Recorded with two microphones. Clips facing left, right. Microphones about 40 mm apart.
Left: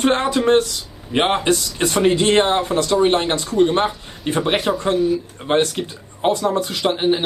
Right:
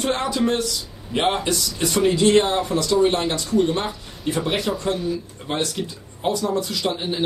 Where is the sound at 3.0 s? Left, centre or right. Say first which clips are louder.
Left 2 dB; left.